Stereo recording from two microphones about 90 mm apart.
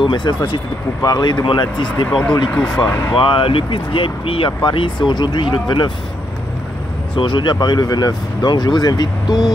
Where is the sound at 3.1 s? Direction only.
75° left (ahead or behind); by 5.8 s 60° left (ahead or behind).